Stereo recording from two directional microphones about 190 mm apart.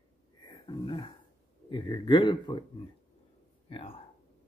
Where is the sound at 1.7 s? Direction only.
25° left (ahead or behind).